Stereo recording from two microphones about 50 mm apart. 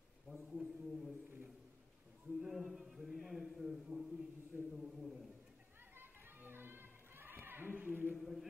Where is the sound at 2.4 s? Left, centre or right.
Centre.